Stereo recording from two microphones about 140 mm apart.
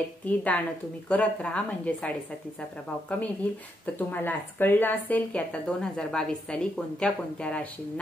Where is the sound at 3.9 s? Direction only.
15° left (ahead or behind).